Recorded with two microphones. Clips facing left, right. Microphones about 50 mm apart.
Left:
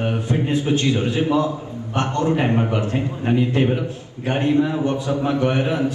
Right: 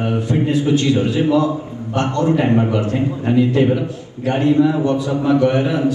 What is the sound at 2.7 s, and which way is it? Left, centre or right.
A man's voice, left.